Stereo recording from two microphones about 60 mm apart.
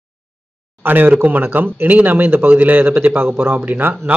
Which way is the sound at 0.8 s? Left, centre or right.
Right.